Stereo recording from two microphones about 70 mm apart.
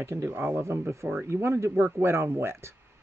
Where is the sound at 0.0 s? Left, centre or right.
Right.